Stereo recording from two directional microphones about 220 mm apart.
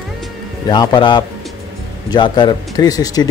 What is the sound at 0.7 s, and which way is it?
Speech, 20° left (ahead or behind).